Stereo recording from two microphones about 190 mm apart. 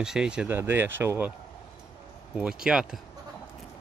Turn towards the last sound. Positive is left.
turn(degrees=-5)  # may be behind; listen again after turning